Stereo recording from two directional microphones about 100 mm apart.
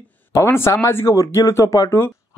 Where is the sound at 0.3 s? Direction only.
25° left (ahead or behind).